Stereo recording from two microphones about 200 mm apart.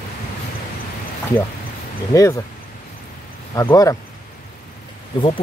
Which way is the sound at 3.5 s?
15° left (ahead or behind).